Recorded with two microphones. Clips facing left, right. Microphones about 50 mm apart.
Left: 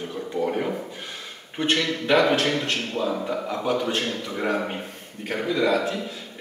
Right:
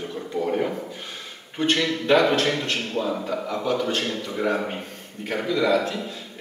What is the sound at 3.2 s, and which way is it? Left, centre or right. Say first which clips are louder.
A man's voice: even; centre.